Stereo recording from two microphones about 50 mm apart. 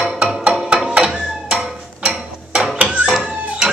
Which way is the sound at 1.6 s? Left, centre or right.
Centre.